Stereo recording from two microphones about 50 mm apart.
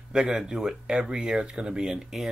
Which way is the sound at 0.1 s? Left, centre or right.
Centre.